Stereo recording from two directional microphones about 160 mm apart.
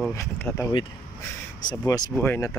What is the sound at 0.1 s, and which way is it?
Speech, 15° left (ahead or behind).